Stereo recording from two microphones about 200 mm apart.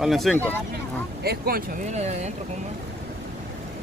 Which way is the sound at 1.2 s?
50° right (ahead or behind).